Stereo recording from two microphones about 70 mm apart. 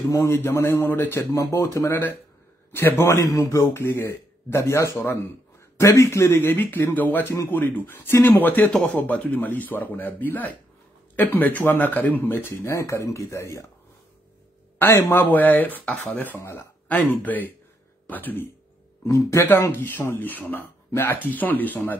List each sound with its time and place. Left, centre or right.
0.1 s speech: left
0.4 s speech: left
1.4 s speech: left
12.6 s speech: left
14.8 s speech: left
16.3 s speech: left
16.8 s speech: left
19.0 s speech: left
19.8 s speech: left